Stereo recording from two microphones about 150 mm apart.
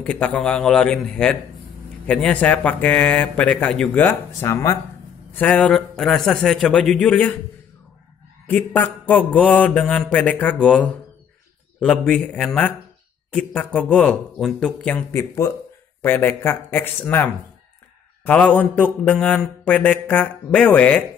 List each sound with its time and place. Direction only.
0.0 s mantra: 10° left (ahead or behind)
4.5 s speech: 20° left (ahead or behind)
5.3 s a man's voice: 10° left (ahead or behind)
8.5 s mantra: 10° left (ahead or behind)
11.8 s a man's voice: 5° left (ahead or behind)
13.3 s mantra: 5° left (ahead or behind)
15.1 s speech: 20° left (ahead or behind)
16.0 s mantra: 15° left (ahead or behind)